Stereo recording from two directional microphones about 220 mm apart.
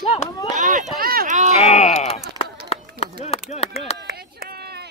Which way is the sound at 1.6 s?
30° left (ahead or behind).